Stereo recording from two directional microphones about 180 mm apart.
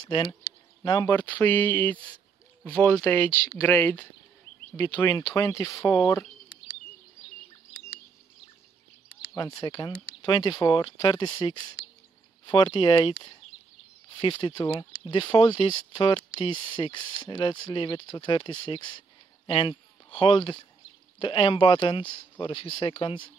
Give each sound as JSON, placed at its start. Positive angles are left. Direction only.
{"t": 0.0, "sound": "speech", "side_deg": 25}
{"t": 9.3, "sound": "speech", "side_deg": 20}